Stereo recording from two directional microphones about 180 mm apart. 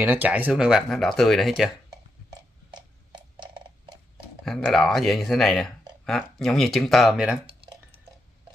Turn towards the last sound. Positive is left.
turn(degrees=-5)  # may be behind; listen again after turning